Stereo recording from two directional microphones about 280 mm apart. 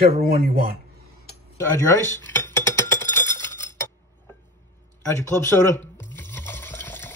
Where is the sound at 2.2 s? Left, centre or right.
Centre.